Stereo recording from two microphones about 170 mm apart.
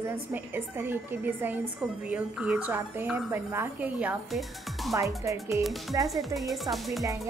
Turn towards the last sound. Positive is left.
turn(degrees=0)  # may be behind; listen again after turning